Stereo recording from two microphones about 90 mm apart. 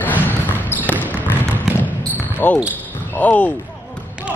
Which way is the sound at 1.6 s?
15° right (ahead or behind).